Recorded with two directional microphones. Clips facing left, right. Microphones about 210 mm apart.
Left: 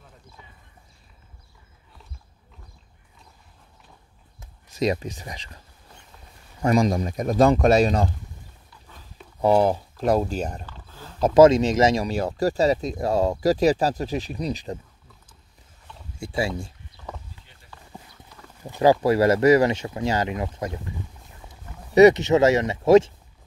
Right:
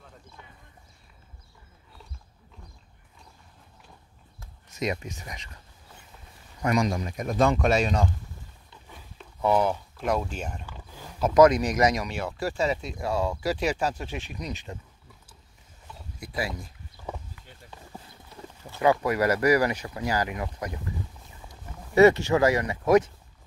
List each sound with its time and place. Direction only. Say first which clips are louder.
4.6 s speech: left 6 dB; 35° left (ahead or behind)
6.6 s speech: left 5 dB; 35° left (ahead or behind)
9.4 s speech: left 5 dB; 35° left (ahead or behind)
10.7 s a sound: even; 15° right (ahead or behind)
11.1 s speech: left 4 dB; 30° left (ahead or behind)
16.2 s speech: left 6 dB; 25° left (ahead or behind)
18.8 s speech: left 5 dB; 30° left (ahead or behind)
21.9 s speech: left 4 dB; 20° left (ahead or behind)